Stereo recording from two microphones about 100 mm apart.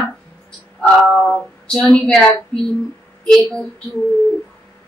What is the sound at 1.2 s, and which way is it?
A woman's voice, 5° left (ahead or behind).